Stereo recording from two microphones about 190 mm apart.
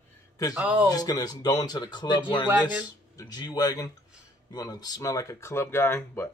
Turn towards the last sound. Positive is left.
turn(degrees=15)  # may be behind; listen again after turning